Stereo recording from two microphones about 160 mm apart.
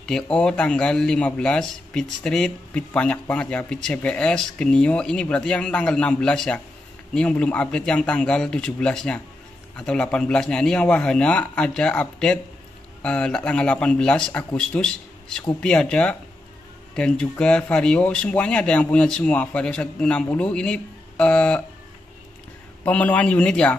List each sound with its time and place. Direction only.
0.0 s speech: 5° left (ahead or behind)
22.8 s speech: 10° left (ahead or behind)